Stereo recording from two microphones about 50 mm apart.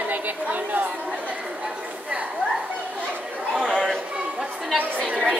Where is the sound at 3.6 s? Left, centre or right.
Centre.